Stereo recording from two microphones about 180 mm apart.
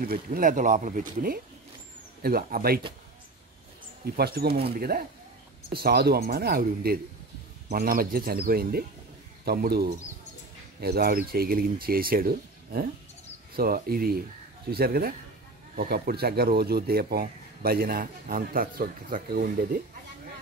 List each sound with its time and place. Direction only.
0.0 s a man's voice: 50° right (ahead or behind)
4.0 s a man's voice: 60° right (ahead or behind)